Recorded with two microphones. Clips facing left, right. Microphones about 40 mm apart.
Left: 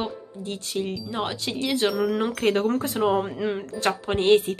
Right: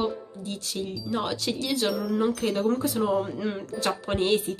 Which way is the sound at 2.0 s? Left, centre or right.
Left.